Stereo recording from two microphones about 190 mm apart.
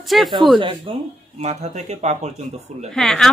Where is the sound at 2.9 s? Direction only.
5° left (ahead or behind).